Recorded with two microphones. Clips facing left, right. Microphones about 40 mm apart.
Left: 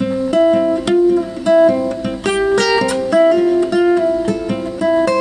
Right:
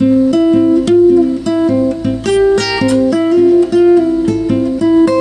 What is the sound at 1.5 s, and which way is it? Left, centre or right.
Guitar, left.